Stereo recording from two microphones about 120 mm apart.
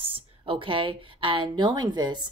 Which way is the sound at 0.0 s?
50° right (ahead or behind).